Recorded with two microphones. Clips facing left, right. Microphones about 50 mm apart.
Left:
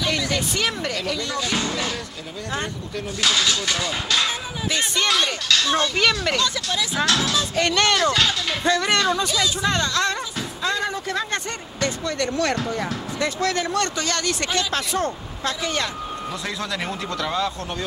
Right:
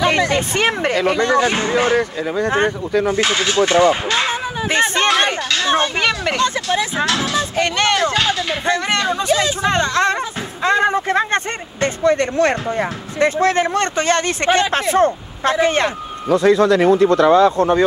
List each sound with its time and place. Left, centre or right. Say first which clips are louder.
0.0 s speech: right 8 dB; right
7.1 s speech: right 3 dB; right
9.3 s speech: right 6 dB; right
16.3 s speech: right 19 dB; right